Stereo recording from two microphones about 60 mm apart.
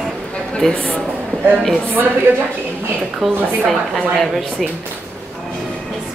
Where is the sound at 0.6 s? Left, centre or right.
Centre.